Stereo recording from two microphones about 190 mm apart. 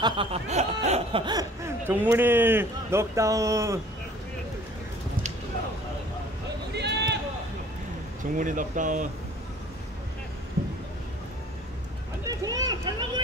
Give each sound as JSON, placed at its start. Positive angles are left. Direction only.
{"t": 0.0, "sound": "speech", "side_deg": -30}
{"t": 6.7, "sound": "run", "side_deg": -60}
{"t": 8.4, "sound": "speech", "side_deg": -45}
{"t": 12.3, "sound": "a sound", "side_deg": -20}